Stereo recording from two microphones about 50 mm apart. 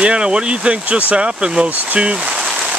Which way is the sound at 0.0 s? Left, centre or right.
Centre.